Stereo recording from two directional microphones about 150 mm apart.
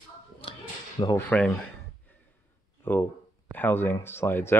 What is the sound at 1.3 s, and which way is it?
Speech, 5° left (ahead or behind).